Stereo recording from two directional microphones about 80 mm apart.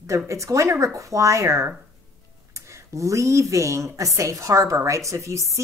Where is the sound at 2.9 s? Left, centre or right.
Right.